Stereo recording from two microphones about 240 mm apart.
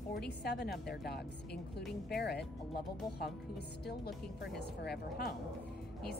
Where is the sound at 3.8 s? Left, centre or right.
Left.